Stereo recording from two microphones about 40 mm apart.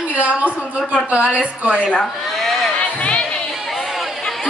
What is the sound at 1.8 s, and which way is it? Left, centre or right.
Speech, left.